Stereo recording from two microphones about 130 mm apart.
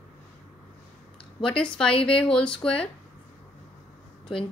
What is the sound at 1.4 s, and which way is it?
Speech, 5° left (ahead or behind).